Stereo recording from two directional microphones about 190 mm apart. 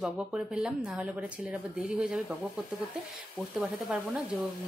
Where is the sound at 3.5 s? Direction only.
5° right (ahead or behind).